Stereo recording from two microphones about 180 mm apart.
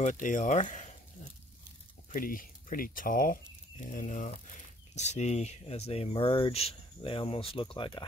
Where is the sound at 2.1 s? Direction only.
50° left (ahead or behind).